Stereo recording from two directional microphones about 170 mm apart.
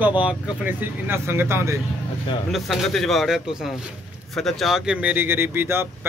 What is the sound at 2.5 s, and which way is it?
Speech, centre (ahead or behind).